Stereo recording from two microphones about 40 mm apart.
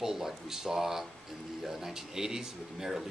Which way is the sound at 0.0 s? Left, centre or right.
Centre.